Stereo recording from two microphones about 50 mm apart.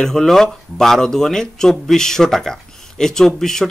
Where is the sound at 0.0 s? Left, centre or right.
Centre.